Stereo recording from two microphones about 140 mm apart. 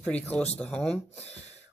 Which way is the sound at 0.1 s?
10° left (ahead or behind).